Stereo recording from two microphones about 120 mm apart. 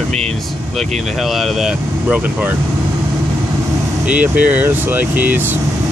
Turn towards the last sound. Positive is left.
turn(degrees=-15)  # may be behind; listen again after turning